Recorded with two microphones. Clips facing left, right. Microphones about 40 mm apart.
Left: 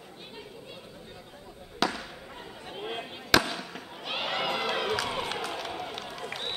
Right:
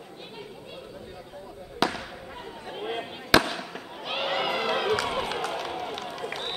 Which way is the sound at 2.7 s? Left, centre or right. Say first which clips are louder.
Right 3 dB; centre.